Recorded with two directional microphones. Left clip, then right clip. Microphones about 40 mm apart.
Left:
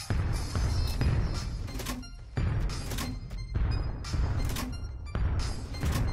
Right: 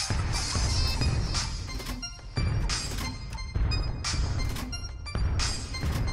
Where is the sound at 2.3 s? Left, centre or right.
Centre.